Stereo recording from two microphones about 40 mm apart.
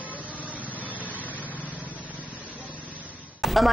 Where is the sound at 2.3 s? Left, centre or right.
Right.